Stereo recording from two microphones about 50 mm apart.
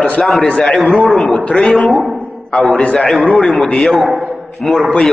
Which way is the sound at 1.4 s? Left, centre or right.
Left.